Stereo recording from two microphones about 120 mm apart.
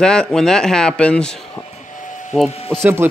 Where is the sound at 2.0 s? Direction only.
90° left.